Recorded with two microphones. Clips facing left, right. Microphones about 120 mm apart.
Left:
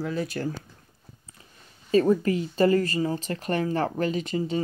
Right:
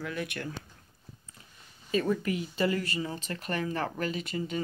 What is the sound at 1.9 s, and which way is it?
Speech, 35° left (ahead or behind).